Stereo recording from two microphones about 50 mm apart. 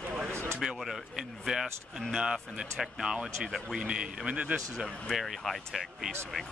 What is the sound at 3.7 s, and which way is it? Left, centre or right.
Speech, centre.